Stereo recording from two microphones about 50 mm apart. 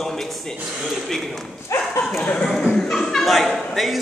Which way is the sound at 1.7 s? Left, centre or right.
Left.